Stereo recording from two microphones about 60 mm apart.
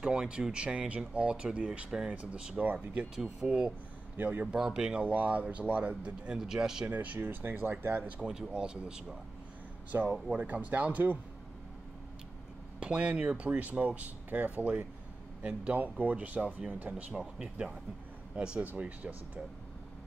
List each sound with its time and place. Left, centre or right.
0.0 s speech: centre
3.2 s speech: centre
4.6 s speech: centre
5.0 s speech: right; by 6.9 s centre
6.9 s speech: right
8.2 s speech: centre
9.9 s speech: right
10.3 s speech: right
12.8 s speech: centre
15.8 s speech: right
17.1 s speech: centre
18.6 s speech: right